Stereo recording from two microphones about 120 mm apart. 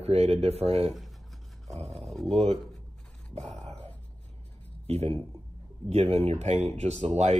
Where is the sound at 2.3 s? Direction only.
60° right (ahead or behind).